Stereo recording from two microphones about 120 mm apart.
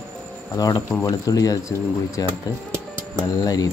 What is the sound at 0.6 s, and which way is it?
Speech, 30° left (ahead or behind).